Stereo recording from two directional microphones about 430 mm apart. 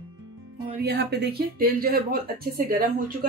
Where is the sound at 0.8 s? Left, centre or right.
Right.